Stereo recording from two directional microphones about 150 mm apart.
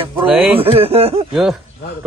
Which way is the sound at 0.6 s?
40° right (ahead or behind).